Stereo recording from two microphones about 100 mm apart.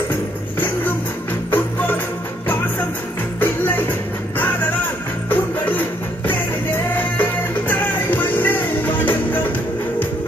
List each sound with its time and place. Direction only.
1.5 s music: 20° left (ahead or behind)
3.3 s music: 20° left (ahead or behind)
5.3 s music: 20° left (ahead or behind)